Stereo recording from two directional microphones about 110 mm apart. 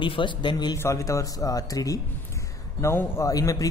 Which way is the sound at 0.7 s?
30° left (ahead or behind).